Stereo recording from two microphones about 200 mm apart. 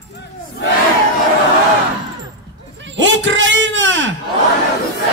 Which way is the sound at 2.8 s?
65° right (ahead or behind).